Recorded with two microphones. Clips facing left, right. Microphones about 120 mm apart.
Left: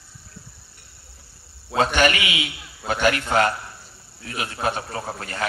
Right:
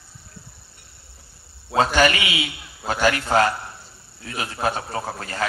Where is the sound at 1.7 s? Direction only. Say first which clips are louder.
Right 1 dB; 35° right (ahead or behind).